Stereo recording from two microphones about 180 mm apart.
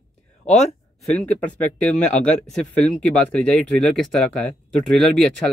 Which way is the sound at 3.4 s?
5° left (ahead or behind).